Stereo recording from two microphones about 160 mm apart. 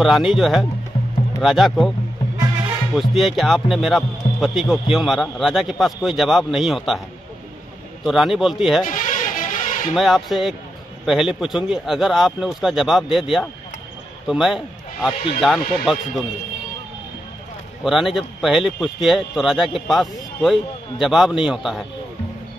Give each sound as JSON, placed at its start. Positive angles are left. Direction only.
{"t": 0.0, "sound": "a man's voice", "side_deg": 0}
{"t": 3.0, "sound": "a man's voice", "side_deg": 0}
{"t": 8.0, "sound": "a man's voice", "side_deg": 0}
{"t": 8.8, "sound": "music", "side_deg": 55}
{"t": 9.9, "sound": "a man's voice", "side_deg": 0}
{"t": 14.2, "sound": "a man's voice", "side_deg": 0}
{"t": 17.8, "sound": "a man's voice", "side_deg": 0}